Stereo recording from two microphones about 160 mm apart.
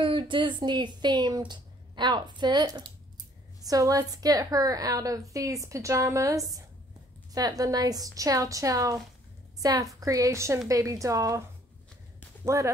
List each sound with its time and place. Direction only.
0.0 s a woman's voice: 30° right (ahead or behind)
12.4 s a woman's voice: 20° right (ahead or behind)